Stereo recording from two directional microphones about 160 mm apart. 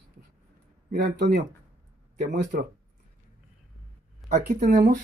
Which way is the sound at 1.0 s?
85° right.